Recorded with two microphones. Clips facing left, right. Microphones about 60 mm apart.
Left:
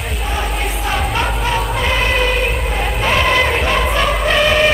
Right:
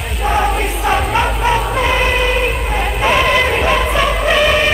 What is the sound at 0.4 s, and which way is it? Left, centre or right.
Music, centre.